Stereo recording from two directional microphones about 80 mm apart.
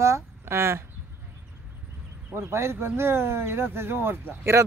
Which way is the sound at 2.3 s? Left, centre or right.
Right.